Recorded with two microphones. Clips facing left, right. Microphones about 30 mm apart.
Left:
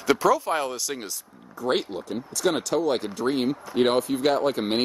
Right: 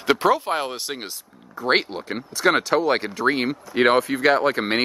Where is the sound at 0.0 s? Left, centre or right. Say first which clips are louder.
Right 2 dB; right.